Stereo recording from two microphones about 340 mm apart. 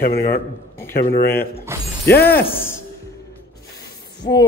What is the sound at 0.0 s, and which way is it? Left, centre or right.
Speech, left.